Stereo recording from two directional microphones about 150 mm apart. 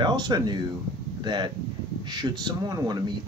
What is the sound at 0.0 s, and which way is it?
Speech, 30° right (ahead or behind).